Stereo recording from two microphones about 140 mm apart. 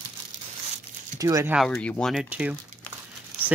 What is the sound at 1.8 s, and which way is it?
Speech, 10° left (ahead or behind).